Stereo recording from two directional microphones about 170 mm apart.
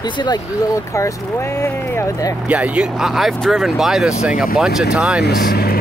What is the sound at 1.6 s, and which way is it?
Speech, 15° left (ahead or behind).